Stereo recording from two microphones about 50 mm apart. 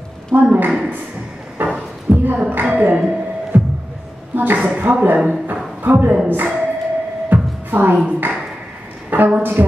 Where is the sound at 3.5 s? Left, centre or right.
Right.